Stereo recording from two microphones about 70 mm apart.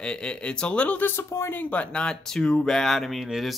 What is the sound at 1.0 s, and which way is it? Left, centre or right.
Speech, left.